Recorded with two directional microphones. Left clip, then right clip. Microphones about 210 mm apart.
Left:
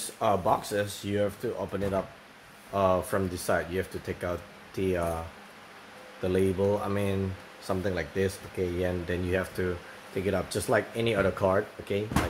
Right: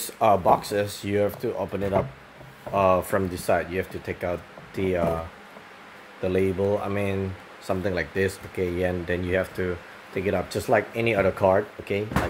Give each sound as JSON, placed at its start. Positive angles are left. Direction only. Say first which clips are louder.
{"t": 0.2, "sound": "speech", "louder": "right 6 dB", "side_deg": -15}
{"t": 6.2, "sound": "speech", "louder": "right 3 dB", "side_deg": -5}